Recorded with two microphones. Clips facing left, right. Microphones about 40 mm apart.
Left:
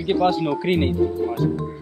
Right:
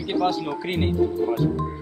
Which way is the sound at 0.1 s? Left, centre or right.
Left.